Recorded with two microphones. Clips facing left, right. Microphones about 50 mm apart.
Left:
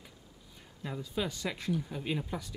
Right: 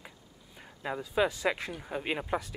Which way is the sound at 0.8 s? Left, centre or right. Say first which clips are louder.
Right 7 dB; right.